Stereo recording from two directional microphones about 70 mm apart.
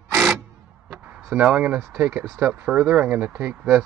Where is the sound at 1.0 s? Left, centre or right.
Right.